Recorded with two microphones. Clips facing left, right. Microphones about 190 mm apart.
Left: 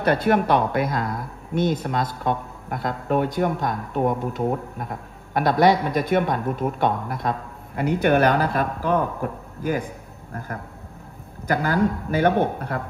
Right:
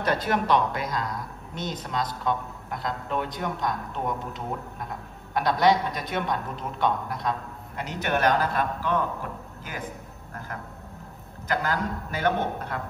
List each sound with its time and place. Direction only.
0.0 s speech: 55° left (ahead or behind)
11.4 s a man's voice: 55° left (ahead or behind)